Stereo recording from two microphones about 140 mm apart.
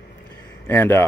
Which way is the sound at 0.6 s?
15° left (ahead or behind).